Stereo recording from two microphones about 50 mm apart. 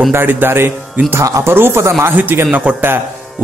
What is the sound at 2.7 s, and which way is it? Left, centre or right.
Speech, right.